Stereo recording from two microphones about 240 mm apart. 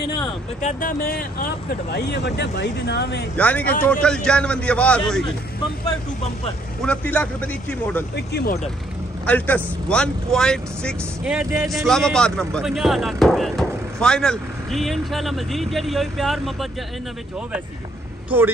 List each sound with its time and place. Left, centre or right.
0.2 s speech: left
3.3 s a man's voice: centre
6.8 s a man's voice: centre
8.3 s speech: left
9.2 s a man's voice: centre
18.3 s speech: centre